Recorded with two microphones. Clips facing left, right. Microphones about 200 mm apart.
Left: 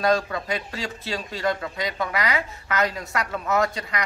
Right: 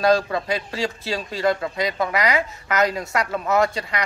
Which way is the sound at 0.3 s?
35° right (ahead or behind).